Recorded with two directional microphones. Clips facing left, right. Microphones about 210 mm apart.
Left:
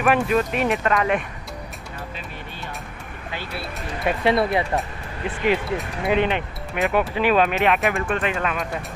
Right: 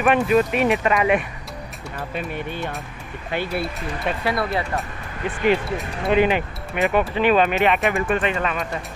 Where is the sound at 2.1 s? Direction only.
60° right (ahead or behind).